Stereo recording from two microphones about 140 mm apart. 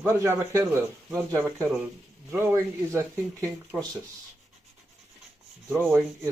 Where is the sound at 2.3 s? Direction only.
20° right (ahead or behind).